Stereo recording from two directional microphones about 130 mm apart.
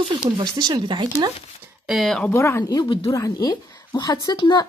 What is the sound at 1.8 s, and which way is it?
Speech, centre (ahead or behind).